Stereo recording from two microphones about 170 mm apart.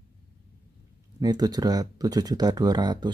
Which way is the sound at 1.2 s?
25° right (ahead or behind).